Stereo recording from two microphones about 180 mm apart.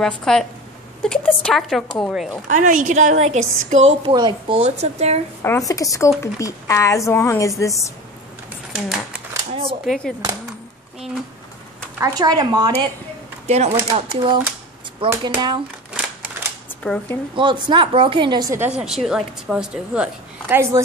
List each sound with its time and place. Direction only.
0.0 s a woman's voice: centre (ahead or behind)
2.4 s a woman's voice: 45° right (ahead or behind)
4.1 s speech: 25° right (ahead or behind)
4.6 s speech: 35° right (ahead or behind)
5.4 s speech: 15° left (ahead or behind)
9.5 s speech: 30° right (ahead or behind)
9.8 s a woman's voice: 5° left (ahead or behind)
12.0 s speech: 20° right (ahead or behind)
13.5 s speech: 35° right (ahead or behind)
16.8 s a woman's voice: 5° left (ahead or behind)
17.4 s speech: 25° right (ahead or behind)
18.6 s a woman's voice: 5° right (ahead or behind)